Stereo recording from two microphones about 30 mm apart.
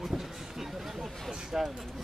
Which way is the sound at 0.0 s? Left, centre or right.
Centre.